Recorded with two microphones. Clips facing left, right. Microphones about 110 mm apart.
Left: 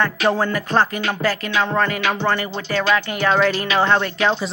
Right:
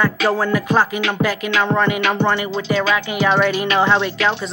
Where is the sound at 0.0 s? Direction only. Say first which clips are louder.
Right 1 dB; 5° right (ahead or behind).